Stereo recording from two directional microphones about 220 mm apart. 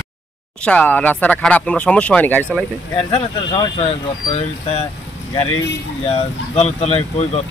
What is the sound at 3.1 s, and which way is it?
Speech, 25° left (ahead or behind).